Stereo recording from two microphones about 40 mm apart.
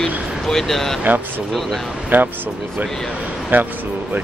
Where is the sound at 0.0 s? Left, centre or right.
Centre.